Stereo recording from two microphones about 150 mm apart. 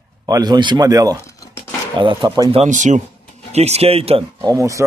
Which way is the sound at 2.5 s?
50° right (ahead or behind).